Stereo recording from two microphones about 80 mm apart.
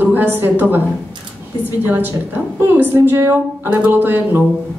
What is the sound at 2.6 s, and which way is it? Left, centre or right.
A woman's voice, right.